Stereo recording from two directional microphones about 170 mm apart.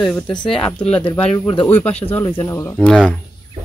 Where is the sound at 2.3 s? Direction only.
15° left (ahead or behind).